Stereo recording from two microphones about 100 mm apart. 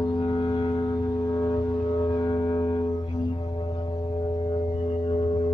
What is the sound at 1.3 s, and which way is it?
Foghorn, 45° left (ahead or behind).